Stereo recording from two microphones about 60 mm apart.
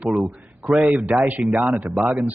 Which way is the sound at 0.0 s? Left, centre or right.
Centre.